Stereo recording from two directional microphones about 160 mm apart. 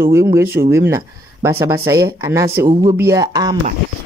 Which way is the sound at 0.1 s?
20° right (ahead or behind).